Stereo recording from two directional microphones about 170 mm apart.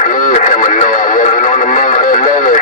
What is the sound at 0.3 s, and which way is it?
Radio, 45° left (ahead or behind).